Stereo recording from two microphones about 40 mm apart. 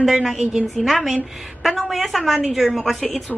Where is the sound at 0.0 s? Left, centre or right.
Centre.